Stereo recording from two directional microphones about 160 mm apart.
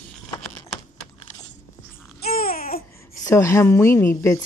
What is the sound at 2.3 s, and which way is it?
Babbling, 65° left (ahead or behind).